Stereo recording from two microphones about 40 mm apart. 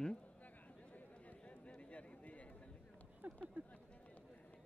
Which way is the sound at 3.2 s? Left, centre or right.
Right.